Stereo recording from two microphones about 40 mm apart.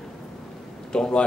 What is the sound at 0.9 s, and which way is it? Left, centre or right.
Speech, left.